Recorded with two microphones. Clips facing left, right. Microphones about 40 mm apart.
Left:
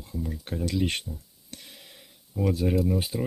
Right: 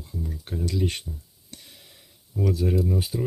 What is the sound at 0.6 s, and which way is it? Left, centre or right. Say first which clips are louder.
Speech: even; left.